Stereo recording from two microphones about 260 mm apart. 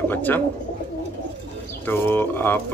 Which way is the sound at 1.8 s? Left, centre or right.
Centre.